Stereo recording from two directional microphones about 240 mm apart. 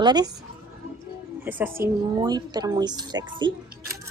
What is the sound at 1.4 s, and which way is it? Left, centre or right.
A woman's voice, centre.